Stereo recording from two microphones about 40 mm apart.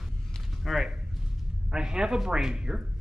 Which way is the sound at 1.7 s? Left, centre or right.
Centre.